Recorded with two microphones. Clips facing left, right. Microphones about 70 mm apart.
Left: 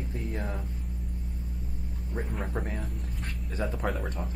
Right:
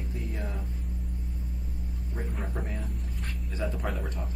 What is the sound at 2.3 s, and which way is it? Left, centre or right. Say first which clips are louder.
Speech: left 2 dB; centre.